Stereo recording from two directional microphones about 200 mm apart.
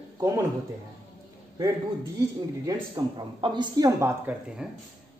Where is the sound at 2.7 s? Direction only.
20° right (ahead or behind); by 4.7 s 5° right (ahead or behind).